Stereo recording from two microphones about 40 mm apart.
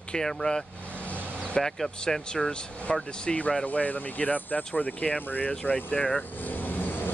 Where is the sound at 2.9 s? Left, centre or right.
Left.